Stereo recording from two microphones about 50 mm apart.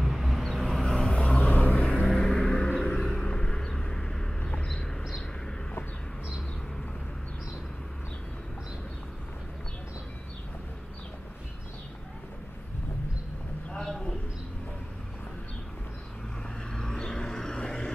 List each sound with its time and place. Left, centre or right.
0.0 s vehicle: centre
1.5 s vehicle: left
2.0 s music: centre
2.5 s vehicle: centre
13.7 s a sound: centre
16.7 s vehicle: centre